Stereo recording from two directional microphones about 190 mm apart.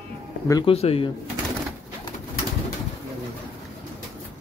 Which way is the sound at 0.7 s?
30° left (ahead or behind).